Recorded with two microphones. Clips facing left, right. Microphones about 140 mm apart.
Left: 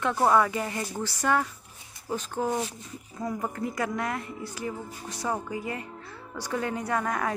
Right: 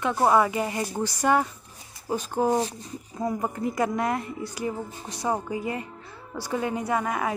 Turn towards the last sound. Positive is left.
turn(degrees=-5)  # may be behind; listen again after turning